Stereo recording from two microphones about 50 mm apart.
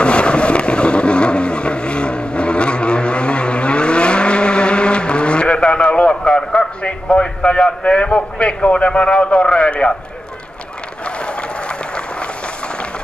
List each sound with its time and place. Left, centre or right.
0.0 s vehicle: left
6.8 s a man's voice: left
11.1 s applause: left